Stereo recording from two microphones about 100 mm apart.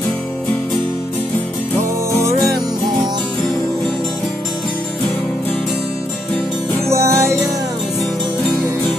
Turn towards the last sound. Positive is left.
turn(degrees=-30)  # may be behind; listen again after turning